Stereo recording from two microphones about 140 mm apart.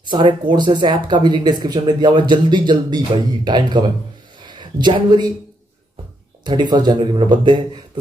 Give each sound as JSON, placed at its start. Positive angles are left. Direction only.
{"t": 0.0, "sound": "speech", "side_deg": -35}
{"t": 6.4, "sound": "speech", "side_deg": -30}